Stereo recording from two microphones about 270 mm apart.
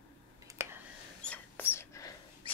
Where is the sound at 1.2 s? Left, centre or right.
Centre.